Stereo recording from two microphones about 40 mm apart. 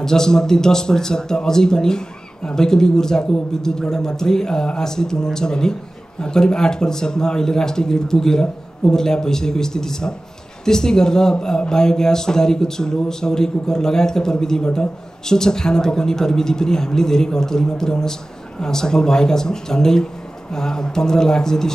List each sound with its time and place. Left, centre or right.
0.0 s speech: centre